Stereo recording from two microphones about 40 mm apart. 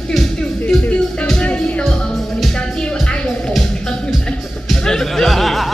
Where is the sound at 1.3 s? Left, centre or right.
Left.